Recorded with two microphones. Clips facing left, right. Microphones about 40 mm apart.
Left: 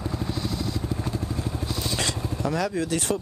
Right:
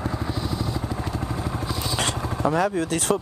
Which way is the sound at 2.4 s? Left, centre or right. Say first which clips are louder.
Right 5 dB; right.